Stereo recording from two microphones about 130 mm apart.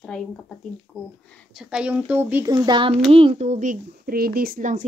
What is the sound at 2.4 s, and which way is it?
Speech, 35° right (ahead or behind).